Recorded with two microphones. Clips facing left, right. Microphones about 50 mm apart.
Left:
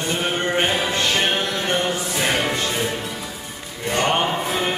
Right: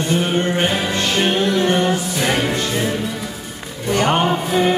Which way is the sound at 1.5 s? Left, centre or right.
Right.